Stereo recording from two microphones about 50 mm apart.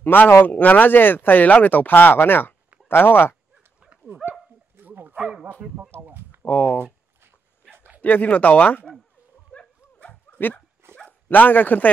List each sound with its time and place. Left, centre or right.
0.0 s speech: left
3.9 s dog: right
4.7 s bow-wow: right
5.9 s a sound: right
6.4 s speech: left
8.0 s speech: left
10.3 s speech: left